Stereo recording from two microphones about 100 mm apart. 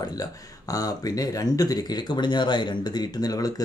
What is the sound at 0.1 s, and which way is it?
Speech, 35° left (ahead or behind).